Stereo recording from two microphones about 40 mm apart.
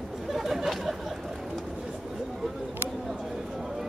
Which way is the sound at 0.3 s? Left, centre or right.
Centre.